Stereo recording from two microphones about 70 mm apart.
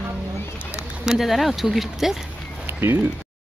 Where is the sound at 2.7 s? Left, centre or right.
Right.